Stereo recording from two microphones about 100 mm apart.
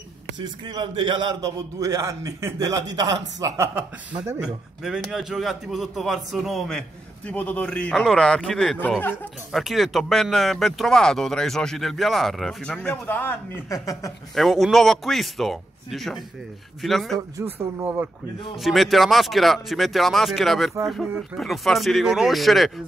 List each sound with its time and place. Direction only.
0.4 s a man's voice: 50° right (ahead or behind); by 3.8 s 30° right (ahead or behind)
4.4 s speech: 5° right (ahead or behind)
7.2 s a man's voice: 15° left (ahead or behind)
13.7 s speech: 35° left (ahead or behind)
14.3 s speech: centre (ahead or behind)
17.6 s speech: 20° right (ahead or behind)
18.6 s speech: centre (ahead or behind)